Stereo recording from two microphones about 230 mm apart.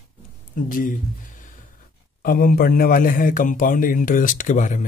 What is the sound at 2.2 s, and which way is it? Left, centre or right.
Speech, left.